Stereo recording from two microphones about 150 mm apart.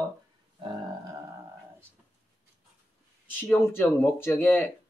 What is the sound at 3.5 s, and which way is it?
Speech, 15° left (ahead or behind).